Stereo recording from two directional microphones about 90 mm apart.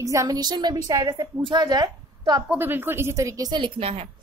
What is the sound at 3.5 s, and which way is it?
Speech, 65° right (ahead or behind).